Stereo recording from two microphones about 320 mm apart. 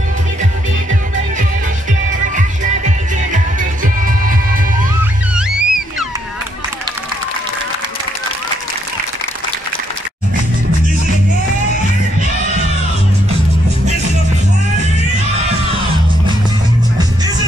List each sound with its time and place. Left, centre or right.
2.3 s music: right
5.3 s music: centre